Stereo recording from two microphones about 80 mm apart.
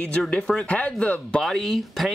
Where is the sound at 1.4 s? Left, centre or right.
Centre.